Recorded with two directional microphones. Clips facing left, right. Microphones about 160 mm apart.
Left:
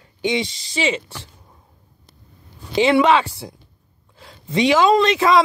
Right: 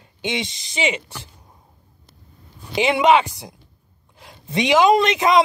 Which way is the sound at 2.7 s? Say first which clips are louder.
Left 1 dB; 15° right (ahead or behind).